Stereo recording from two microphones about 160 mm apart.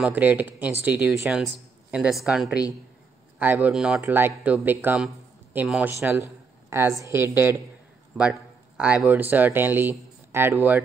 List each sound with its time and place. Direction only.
0.0 s a woman's voice: 10° right (ahead or behind)